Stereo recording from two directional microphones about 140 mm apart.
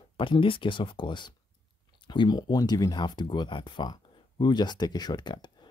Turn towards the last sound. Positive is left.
turn(degrees=35)  # may be behind; listen again after turning